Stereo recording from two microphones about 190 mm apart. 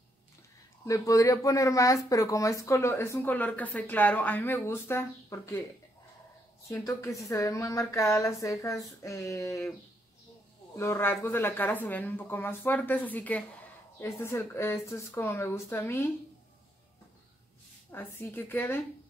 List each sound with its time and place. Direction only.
0.8 s speech: 15° left (ahead or behind)
6.7 s speech: 15° left (ahead or behind)
10.8 s speech: 15° left (ahead or behind)
17.9 s speech: 10° left (ahead or behind)